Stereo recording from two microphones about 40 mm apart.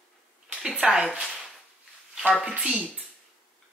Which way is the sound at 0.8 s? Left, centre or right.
Right.